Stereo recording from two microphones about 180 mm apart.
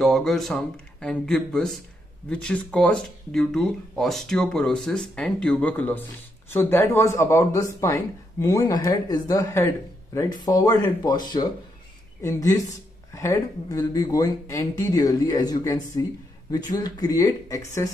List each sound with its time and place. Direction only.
0.0 s a man's voice: centre (ahead or behind); by 17.8 s 20° left (ahead or behind)